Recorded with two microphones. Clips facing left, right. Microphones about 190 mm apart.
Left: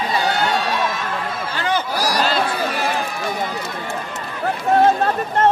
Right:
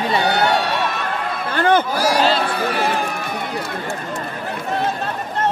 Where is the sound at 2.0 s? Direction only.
35° left (ahead or behind).